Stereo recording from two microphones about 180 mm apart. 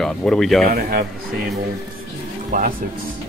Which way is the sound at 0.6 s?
55° right (ahead or behind).